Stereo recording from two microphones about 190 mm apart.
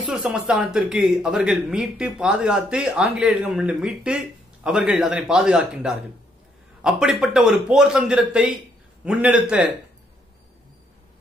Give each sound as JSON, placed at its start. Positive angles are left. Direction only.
{"t": 0.0, "sound": "speech", "side_deg": 0}